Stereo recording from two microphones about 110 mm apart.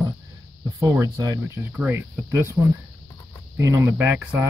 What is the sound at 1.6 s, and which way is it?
Speech, 15° right (ahead or behind).